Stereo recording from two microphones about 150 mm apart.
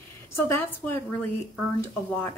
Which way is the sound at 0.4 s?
15° left (ahead or behind).